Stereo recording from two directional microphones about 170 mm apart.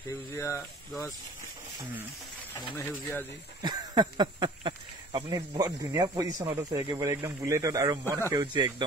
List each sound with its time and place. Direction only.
0.3 s speech: 15° left (ahead or behind)
2.6 s speech: 10° left (ahead or behind)
3.6 s speech: 25° right (ahead or behind)